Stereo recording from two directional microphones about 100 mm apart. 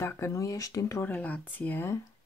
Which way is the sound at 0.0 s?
30° left (ahead or behind).